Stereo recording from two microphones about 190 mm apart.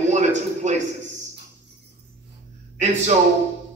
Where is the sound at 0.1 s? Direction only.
40° right (ahead or behind).